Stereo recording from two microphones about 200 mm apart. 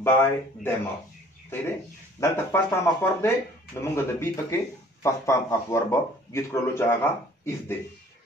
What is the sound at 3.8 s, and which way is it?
Speech, 10° left (ahead or behind).